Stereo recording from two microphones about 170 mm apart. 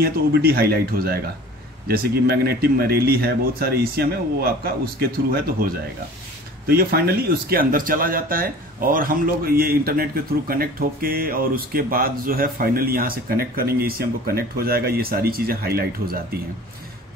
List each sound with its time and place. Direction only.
0.0 s speech: 65° right (ahead or behind)